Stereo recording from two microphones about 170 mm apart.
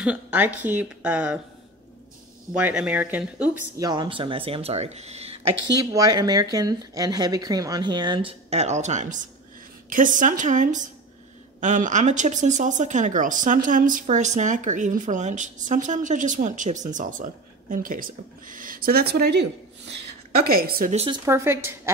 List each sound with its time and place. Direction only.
0.0 s speech: 10° right (ahead or behind)
2.5 s speech: 5° right (ahead or behind)
3.7 s speech: 25° right (ahead or behind); by 5.3 s 40° right (ahead or behind)
5.7 s speech: 25° right (ahead or behind); by 19.9 s 75° right (ahead or behind)
20.4 s a woman's voice: 60° right (ahead or behind)
20.9 s speech: 35° right (ahead or behind)
21.3 s speech: 15° right (ahead or behind)